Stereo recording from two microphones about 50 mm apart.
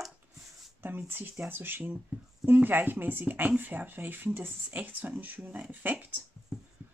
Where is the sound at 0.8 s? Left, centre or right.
Right.